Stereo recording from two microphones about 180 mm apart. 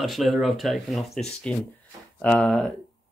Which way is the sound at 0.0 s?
Centre (ahead or behind).